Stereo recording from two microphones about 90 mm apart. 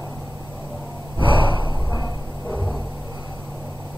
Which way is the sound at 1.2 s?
65° right (ahead or behind).